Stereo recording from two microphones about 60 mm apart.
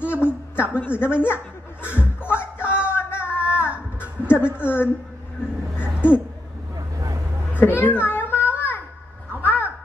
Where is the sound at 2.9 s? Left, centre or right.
Left.